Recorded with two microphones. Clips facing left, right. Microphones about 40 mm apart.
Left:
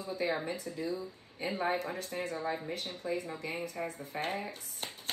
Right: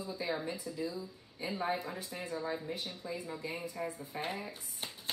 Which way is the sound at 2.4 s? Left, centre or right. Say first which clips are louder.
Left 2 dB; left.